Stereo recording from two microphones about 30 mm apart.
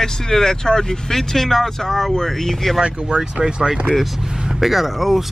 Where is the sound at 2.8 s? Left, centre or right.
Right.